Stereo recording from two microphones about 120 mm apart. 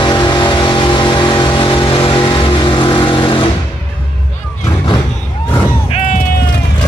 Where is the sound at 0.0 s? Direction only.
40° left (ahead or behind).